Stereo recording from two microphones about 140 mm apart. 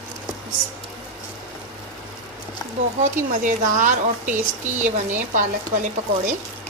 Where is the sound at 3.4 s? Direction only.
70° right (ahead or behind).